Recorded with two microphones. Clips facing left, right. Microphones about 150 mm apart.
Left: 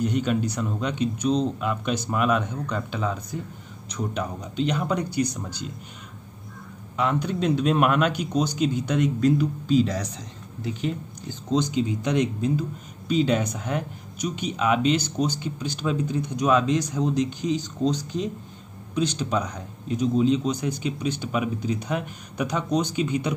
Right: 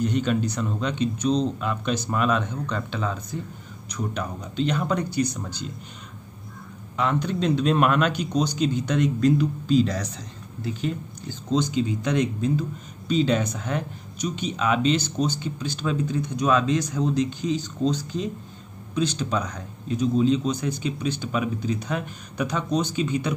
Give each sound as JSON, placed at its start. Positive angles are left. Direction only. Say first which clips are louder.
{"t": 0.0, "sound": "speech", "louder": "even", "side_deg": 10}
{"t": 7.0, "sound": "speech", "louder": "even", "side_deg": 10}